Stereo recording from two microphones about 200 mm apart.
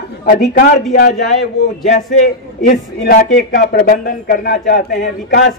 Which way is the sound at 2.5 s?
45° left (ahead or behind).